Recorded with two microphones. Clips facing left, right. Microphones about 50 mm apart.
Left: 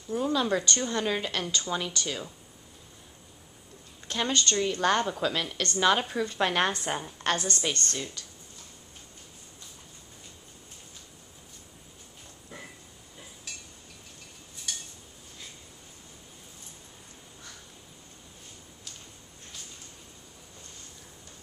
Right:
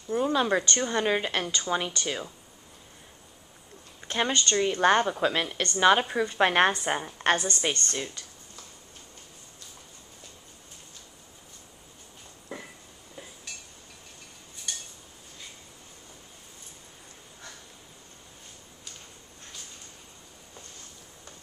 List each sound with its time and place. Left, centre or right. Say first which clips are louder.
0.1 s a woman's voice: right 2 dB; right
4.1 s a woman's voice: right 2 dB; right